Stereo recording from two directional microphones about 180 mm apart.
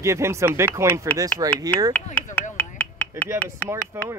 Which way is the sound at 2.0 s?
10° left (ahead or behind).